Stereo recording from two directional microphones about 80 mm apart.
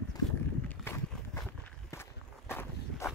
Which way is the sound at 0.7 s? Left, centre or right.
Left.